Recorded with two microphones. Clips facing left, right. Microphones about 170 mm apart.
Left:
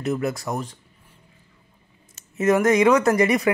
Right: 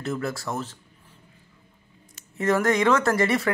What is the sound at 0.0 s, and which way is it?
Speech, 20° left (ahead or behind).